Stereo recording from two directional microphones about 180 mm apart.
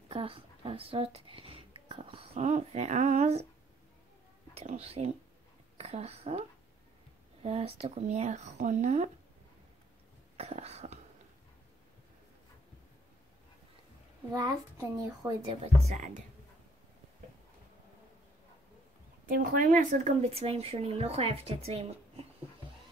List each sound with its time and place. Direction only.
0.1 s a sound: 30° right (ahead or behind)
4.6 s speech: 35° right (ahead or behind)
7.4 s speech: 35° right (ahead or behind)
10.3 s speech: 35° right (ahead or behind)
14.3 s a child's voice: 20° right (ahead or behind)
15.6 s speech: 40° right (ahead or behind)
19.2 s speech: 50° right (ahead or behind); by 22.2 s 35° right (ahead or behind)